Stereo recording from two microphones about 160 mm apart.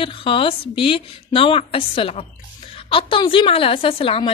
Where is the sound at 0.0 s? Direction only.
35° left (ahead or behind).